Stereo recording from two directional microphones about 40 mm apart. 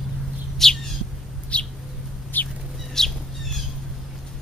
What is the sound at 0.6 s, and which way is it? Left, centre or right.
Bird, centre.